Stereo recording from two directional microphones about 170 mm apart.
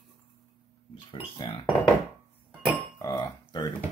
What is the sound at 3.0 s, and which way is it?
Burping, 20° left (ahead or behind).